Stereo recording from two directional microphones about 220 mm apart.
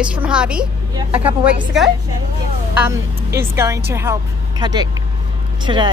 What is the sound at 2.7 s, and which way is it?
A man's voice, 10° right (ahead or behind).